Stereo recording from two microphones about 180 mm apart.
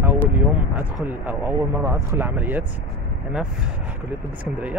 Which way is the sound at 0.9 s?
10° right (ahead or behind).